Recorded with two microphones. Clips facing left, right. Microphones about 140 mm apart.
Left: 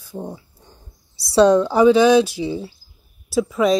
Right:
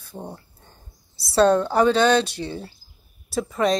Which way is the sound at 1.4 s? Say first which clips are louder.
Left 4 dB; 10° left (ahead or behind).